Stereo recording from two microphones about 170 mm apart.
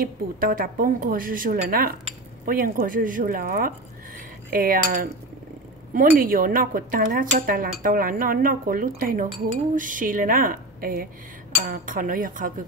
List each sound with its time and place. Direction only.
0.0 s speech: 60° right (ahead or behind)
11.6 s cutlery: 55° right (ahead or behind)